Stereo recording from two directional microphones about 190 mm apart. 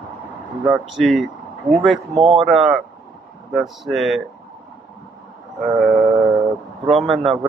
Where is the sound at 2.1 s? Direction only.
30° right (ahead or behind).